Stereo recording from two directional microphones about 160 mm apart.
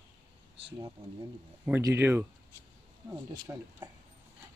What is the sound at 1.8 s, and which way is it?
Speech, 15° right (ahead or behind).